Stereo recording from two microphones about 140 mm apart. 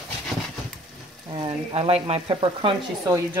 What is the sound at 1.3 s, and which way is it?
Speech, 40° right (ahead or behind).